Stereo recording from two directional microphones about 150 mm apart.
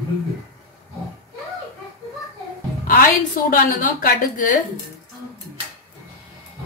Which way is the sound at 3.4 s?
65° left (ahead or behind).